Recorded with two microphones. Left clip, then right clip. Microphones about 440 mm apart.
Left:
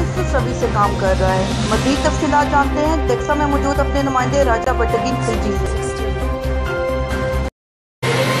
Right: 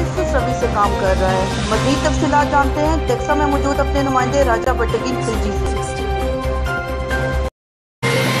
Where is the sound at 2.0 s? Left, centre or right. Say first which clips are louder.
Left 1 dB; centre.